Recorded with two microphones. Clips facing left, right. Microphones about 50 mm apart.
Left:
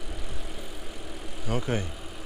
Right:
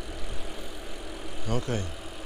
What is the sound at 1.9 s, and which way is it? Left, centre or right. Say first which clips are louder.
Vehicle: right 1 dB; centre.